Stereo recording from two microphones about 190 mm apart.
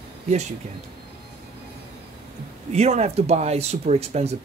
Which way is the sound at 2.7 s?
35° right (ahead or behind).